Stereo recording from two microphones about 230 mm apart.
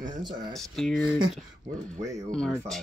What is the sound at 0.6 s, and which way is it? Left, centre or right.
Speech, centre.